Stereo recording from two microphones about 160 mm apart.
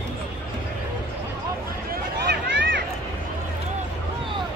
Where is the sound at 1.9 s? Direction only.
90° right.